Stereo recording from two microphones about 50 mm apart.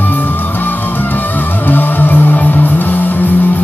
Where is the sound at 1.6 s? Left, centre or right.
Left.